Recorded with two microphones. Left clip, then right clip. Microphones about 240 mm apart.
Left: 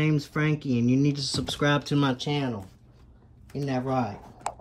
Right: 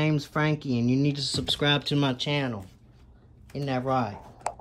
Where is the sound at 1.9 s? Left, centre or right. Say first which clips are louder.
Even; centre.